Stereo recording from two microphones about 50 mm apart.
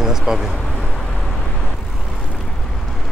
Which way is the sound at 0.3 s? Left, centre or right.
Centre.